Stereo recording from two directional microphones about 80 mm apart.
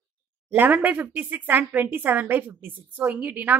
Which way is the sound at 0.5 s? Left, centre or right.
Right.